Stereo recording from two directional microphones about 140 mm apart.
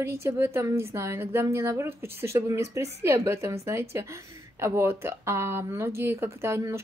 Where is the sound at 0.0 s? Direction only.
20° right (ahead or behind).